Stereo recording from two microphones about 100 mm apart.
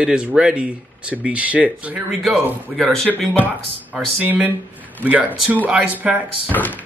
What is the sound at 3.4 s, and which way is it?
Speech, 15° right (ahead or behind).